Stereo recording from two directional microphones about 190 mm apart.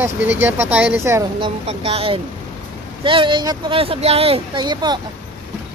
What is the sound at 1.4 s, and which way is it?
Speech, 30° right (ahead or behind).